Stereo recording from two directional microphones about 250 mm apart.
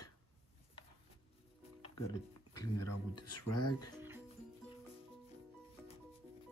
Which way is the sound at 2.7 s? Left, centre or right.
Left.